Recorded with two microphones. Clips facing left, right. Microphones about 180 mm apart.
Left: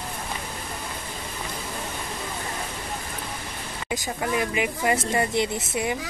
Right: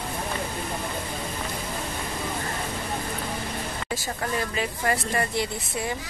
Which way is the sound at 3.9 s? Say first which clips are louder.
Left 4 dB; 15° left (ahead or behind).